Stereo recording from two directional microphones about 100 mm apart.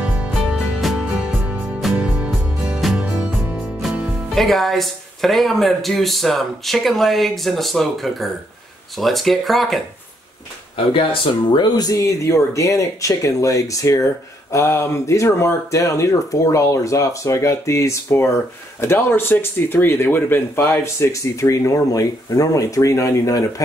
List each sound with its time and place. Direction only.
0.0 s music: 10° right (ahead or behind)
4.3 s speech: centre (ahead or behind)
10.9 s speech: 60° left (ahead or behind)
11.6 s speech: 40° left (ahead or behind)
12.2 s speech: 30° left (ahead or behind)